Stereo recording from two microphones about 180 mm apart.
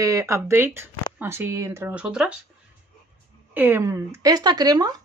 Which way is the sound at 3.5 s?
10° right (ahead or behind).